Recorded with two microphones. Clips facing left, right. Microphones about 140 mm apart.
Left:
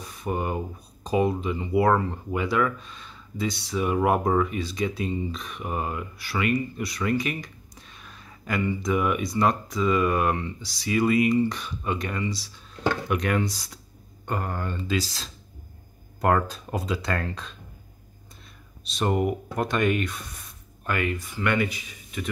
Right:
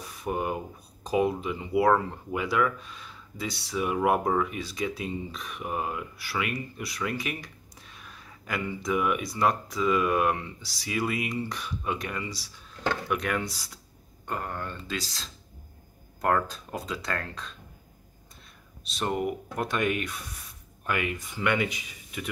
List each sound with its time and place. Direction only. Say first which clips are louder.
0.0 s speech: left 1 dB; 5° right (ahead or behind)
18.9 s speech: left 4 dB; centre (ahead or behind)